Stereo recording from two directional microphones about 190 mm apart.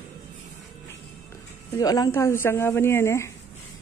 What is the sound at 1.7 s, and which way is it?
Speech, 20° left (ahead or behind).